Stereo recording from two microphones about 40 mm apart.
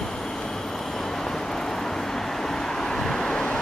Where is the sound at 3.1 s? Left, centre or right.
Centre.